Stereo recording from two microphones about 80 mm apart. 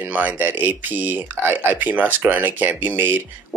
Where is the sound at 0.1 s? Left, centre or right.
Centre.